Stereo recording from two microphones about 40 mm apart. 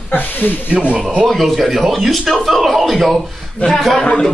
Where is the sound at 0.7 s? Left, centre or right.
Right.